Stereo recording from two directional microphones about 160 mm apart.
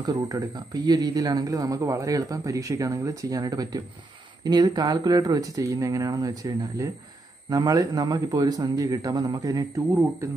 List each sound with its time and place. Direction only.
0.0 s speech: 25° right (ahead or behind)